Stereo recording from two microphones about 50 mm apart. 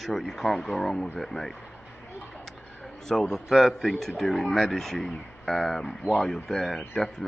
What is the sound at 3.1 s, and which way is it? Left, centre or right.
A man's voice, centre.